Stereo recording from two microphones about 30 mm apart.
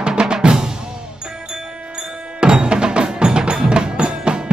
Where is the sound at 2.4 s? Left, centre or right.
Right.